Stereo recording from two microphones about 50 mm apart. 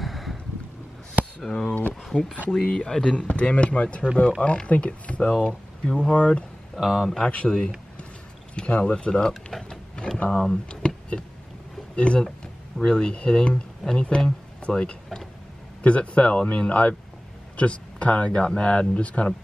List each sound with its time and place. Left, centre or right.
0.0 s boat: centre
1.4 s speech: centre
2.1 s speech: left
6.8 s speech: centre
7.2 s speech: centre
9.3 s speech: centre
9.7 s a sound: centre
10.1 s speech: left
11.1 s boat: centre
11.9 s speech: left
12.7 s speech: centre